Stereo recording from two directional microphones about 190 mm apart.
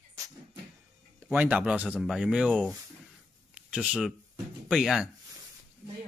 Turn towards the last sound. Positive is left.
turn(degrees=-5)  # may be behind; listen again after turning